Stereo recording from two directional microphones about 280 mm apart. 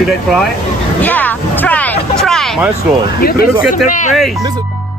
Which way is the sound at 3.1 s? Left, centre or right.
Left.